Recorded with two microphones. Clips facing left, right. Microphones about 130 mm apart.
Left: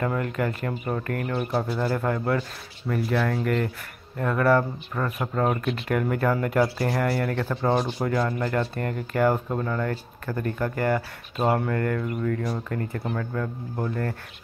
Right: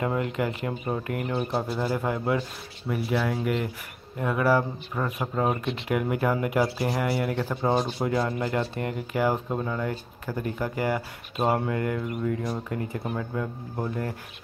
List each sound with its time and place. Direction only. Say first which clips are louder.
0.0 s speech: left 1 dB; 20° right (ahead or behind)